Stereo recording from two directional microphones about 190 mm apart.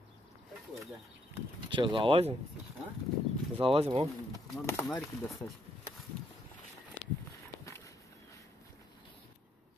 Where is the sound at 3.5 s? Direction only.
30° right (ahead or behind).